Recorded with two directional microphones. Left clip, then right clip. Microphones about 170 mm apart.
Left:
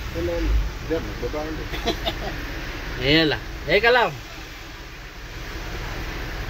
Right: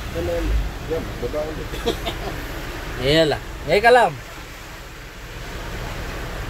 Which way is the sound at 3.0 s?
10° right (ahead or behind).